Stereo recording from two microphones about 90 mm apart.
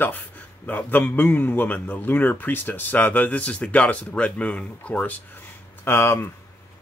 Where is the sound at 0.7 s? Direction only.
20° left (ahead or behind).